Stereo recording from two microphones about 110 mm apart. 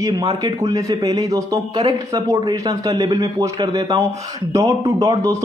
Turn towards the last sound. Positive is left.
turn(degrees=-30)  # may be behind; listen again after turning